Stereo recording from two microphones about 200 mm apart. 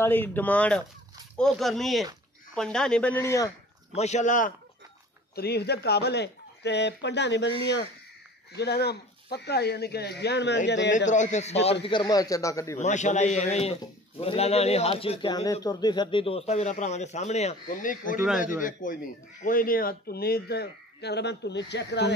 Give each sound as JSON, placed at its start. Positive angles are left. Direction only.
{"t": 0.0, "sound": "speech", "side_deg": 10}
{"t": 3.9, "sound": "a man's voice", "side_deg": 35}
{"t": 5.3, "sound": "speech", "side_deg": 55}
{"t": 8.5, "sound": "speech", "side_deg": 55}
{"t": 11.1, "sound": "a man's voice", "side_deg": 35}
{"t": 11.8, "sound": "speech", "side_deg": 20}
{"t": 12.7, "sound": "a man's voice", "side_deg": 35}